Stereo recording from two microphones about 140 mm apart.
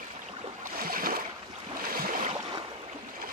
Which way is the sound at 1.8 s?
90° right.